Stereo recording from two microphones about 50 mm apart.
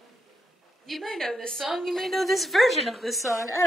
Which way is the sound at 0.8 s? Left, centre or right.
Centre.